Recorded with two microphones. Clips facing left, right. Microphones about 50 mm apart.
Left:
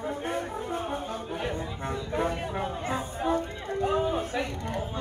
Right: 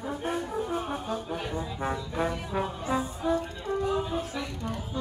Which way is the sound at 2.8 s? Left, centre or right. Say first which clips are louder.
Even; left.